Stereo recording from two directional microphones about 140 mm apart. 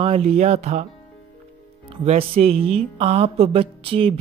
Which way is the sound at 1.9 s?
45° right (ahead or behind).